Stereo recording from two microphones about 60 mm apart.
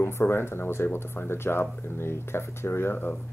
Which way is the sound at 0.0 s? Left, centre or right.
Left.